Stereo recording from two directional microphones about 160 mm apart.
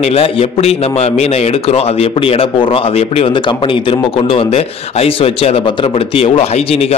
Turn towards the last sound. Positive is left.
turn(degrees=40)  # may be behind; listen again after turning